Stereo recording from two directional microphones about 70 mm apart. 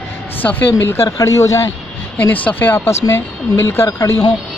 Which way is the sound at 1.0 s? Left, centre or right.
Left.